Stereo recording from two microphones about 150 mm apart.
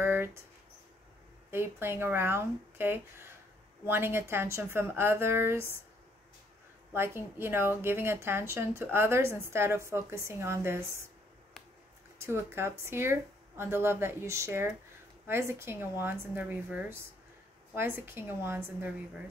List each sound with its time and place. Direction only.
0.0 s mouse: 15° right (ahead or behind)
1.5 s a woman's voice: 15° right (ahead or behind)
6.9 s a woman's voice: 15° right (ahead or behind)
12.2 s a woman's voice: 15° right (ahead or behind)